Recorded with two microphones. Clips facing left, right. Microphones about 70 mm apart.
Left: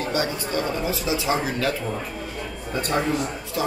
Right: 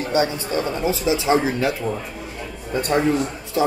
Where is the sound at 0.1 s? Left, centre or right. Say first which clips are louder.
Right 7 dB; right.